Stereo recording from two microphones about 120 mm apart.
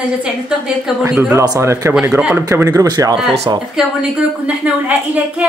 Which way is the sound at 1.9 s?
10° right (ahead or behind).